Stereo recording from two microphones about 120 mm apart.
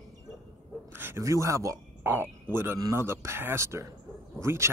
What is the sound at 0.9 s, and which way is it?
Speech, 20° right (ahead or behind).